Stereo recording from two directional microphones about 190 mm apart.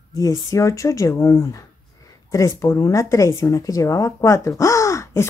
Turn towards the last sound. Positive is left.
turn(degrees=15)  # may be behind; listen again after turning